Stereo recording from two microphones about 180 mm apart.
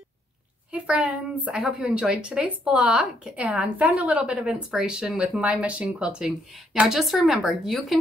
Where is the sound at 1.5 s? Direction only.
5° right (ahead or behind).